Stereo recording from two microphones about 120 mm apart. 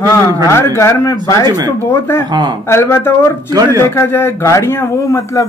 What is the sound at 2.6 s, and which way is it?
Speech, 20° left (ahead or behind).